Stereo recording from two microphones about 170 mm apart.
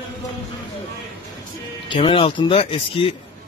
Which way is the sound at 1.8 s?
30° left (ahead or behind).